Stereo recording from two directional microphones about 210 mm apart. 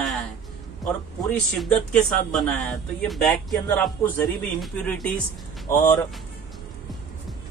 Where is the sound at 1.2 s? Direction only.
Centre (ahead or behind).